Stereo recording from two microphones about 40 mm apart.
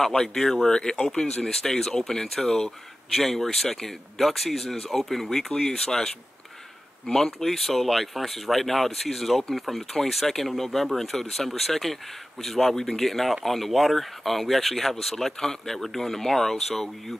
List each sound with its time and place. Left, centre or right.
0.0 s speech: centre
1.4 s speech: centre